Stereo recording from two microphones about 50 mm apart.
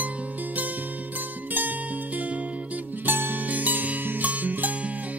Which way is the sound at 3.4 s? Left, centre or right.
Right.